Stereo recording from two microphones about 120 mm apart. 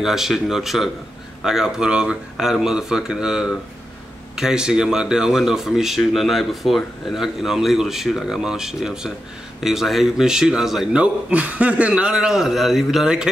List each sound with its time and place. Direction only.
0.0 s speech: 5° right (ahead or behind)